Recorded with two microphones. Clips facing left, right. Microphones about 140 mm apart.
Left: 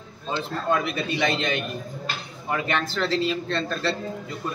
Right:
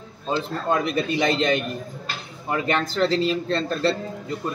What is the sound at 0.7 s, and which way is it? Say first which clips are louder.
Speech: right 2 dB; 40° right (ahead or behind).